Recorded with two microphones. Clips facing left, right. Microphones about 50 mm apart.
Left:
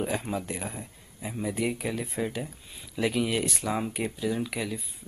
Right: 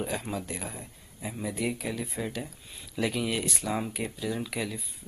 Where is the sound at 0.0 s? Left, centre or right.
Centre.